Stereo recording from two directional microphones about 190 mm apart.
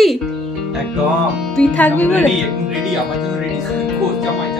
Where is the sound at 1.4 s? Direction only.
5° left (ahead or behind).